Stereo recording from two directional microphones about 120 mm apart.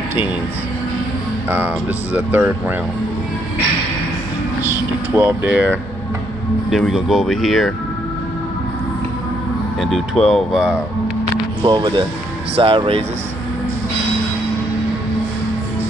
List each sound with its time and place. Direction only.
2.1 s speech: 15° right (ahead or behind)
5.1 s speech: 20° right (ahead or behind)
6.7 s speech: centre (ahead or behind)
9.8 s speech: centre (ahead or behind)
11.6 s speech: 40° right (ahead or behind)
12.5 s speech: 50° right (ahead or behind)